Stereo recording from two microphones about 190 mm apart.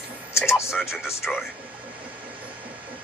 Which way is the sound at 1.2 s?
5° right (ahead or behind).